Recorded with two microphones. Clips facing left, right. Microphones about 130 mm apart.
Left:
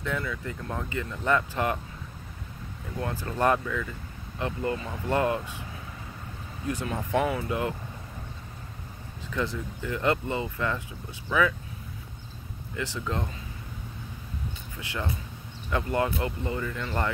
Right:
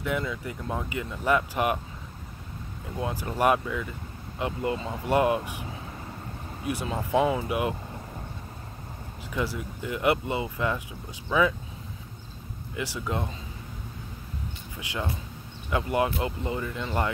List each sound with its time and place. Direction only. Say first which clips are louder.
0.0 s speech: right 2 dB; 15° right (ahead or behind)
3.0 s speech: right 1 dB; 15° right (ahead or behind)
6.6 s speech: right 1 dB; 10° right (ahead or behind)
9.3 s speech: even; 10° right (ahead or behind)
12.7 s speech: right 1 dB; 10° right (ahead or behind)
14.8 s speech: right 1 dB; 15° right (ahead or behind)